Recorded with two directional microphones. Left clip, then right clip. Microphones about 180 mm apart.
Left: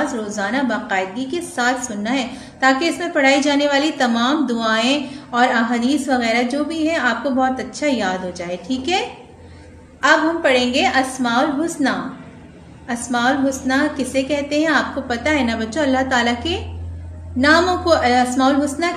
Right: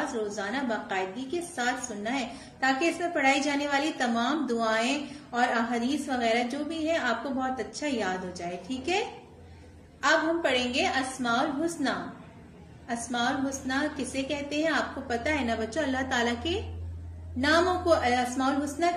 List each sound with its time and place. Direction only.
0.4 s a woman's voice: 15° left (ahead or behind)